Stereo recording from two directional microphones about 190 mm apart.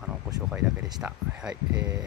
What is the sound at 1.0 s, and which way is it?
Speech, 5° right (ahead or behind).